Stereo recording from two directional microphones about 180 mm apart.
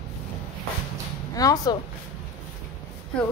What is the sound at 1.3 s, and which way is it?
Speech, 20° left (ahead or behind).